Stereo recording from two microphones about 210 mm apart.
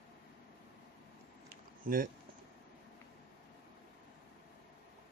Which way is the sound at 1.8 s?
40° right (ahead or behind).